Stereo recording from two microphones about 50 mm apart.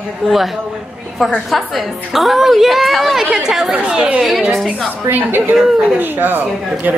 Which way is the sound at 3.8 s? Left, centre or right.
Right.